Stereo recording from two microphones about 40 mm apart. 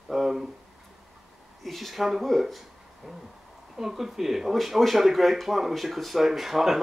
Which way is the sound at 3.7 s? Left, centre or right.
Centre.